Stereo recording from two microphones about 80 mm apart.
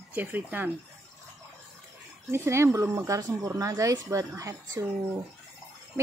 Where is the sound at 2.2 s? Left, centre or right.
Right.